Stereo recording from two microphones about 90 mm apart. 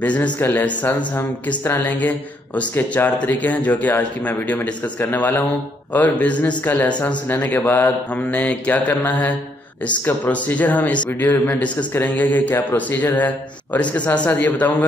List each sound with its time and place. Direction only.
0.0 s speech: 15° left (ahead or behind)